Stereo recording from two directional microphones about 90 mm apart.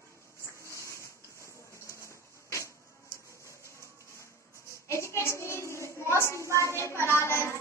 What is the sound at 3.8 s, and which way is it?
Music, 35° left (ahead or behind).